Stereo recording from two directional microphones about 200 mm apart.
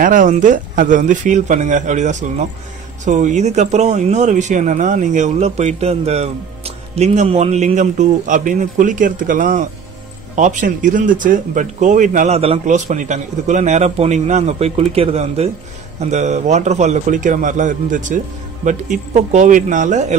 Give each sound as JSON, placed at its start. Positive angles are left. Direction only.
{"t": 0.0, "sound": "speech", "side_deg": -40}